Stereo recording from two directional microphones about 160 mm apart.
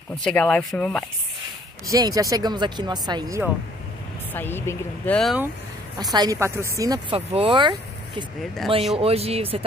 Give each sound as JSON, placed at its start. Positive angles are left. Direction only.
{"t": 0.2, "sound": "speech", "side_deg": 5}
{"t": 1.9, "sound": "speech", "side_deg": -20}
{"t": 4.3, "sound": "speech", "side_deg": 15}
{"t": 6.1, "sound": "speech", "side_deg": -25}
{"t": 7.2, "sound": "speech", "side_deg": -35}
{"t": 8.9, "sound": "speech", "side_deg": -40}